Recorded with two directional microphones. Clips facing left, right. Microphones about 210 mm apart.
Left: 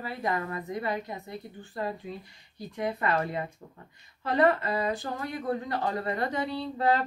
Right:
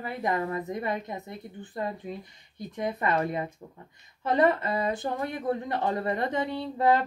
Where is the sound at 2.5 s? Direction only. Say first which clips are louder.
Even; 20° right (ahead or behind).